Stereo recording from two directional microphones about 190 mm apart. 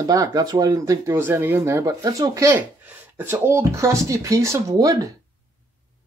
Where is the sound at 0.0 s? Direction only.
20° right (ahead or behind).